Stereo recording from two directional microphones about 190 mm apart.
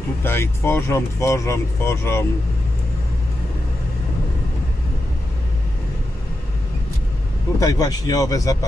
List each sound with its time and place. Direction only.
0.2 s speech: 10° left (ahead or behind)
7.6 s a man's voice: 20° left (ahead or behind)